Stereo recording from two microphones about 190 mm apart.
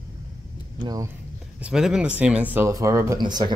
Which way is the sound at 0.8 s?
20° right (ahead or behind).